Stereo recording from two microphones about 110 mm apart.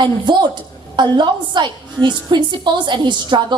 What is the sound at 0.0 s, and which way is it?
A woman's voice, 45° right (ahead or behind).